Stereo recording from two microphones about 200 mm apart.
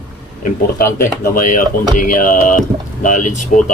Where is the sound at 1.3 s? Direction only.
45° left (ahead or behind).